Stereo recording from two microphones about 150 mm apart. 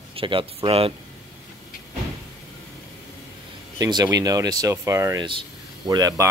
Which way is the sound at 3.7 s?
25° right (ahead or behind).